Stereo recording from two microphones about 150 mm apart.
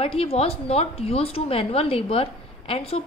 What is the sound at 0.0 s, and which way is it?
A woman's voice, 40° left (ahead or behind).